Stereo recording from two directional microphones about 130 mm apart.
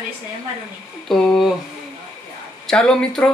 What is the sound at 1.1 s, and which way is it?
Speech, centre (ahead or behind).